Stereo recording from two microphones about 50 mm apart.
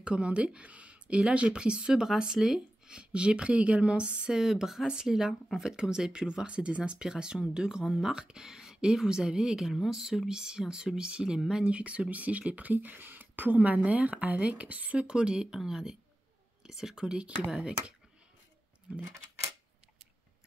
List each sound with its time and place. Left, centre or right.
0.0 s speech: right
3.0 s speech: right
4.3 s speech: centre
11.7 s speech: right
15.5 s speech: centre